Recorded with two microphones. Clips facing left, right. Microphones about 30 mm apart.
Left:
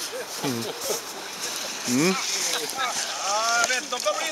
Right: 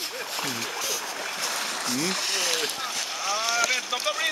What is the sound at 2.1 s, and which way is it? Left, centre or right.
Speech, right.